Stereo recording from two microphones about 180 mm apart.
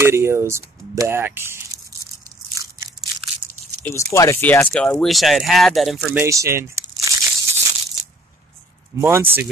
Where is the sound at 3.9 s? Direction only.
15° left (ahead or behind); by 6.2 s centre (ahead or behind).